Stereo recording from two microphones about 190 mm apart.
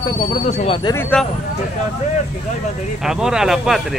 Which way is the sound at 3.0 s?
5° right (ahead or behind).